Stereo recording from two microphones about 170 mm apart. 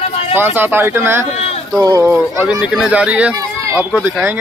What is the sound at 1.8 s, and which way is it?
Speech, 20° right (ahead or behind).